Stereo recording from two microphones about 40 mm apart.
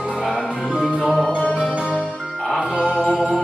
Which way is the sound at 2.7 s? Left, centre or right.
Right.